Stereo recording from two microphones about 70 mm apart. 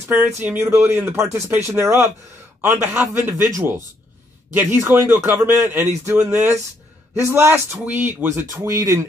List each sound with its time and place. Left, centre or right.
0.1 s speech: right
1.1 s speech: right
1.8 s speech: right
4.6 s speech: right
8.5 s speech: right